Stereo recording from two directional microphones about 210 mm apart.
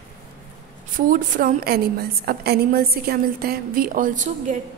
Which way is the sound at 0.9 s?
40° right (ahead or behind).